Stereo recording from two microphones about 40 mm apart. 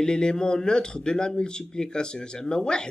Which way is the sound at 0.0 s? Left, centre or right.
Left.